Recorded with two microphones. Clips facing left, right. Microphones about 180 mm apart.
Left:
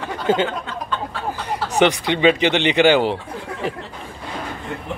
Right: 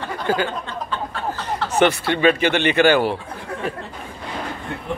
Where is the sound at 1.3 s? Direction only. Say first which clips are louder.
Even; 15° left (ahead or behind).